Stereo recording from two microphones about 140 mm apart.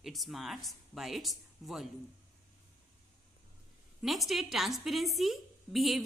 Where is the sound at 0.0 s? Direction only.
Centre (ahead or behind).